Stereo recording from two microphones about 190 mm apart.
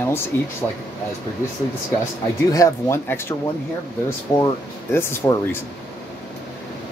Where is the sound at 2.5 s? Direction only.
15° left (ahead or behind).